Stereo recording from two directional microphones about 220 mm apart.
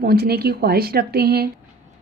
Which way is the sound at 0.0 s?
45° right (ahead or behind).